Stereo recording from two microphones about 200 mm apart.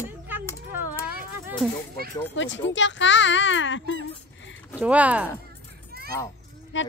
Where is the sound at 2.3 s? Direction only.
65° left (ahead or behind).